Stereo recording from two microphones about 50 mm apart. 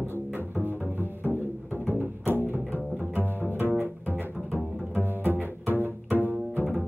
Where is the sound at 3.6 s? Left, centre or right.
Left.